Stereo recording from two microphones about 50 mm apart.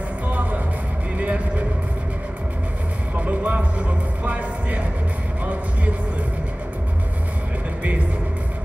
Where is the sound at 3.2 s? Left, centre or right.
Right.